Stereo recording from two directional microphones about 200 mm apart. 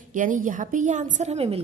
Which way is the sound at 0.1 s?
40° right (ahead or behind).